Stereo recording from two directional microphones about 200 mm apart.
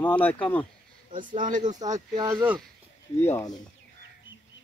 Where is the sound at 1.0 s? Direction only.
25° right (ahead or behind).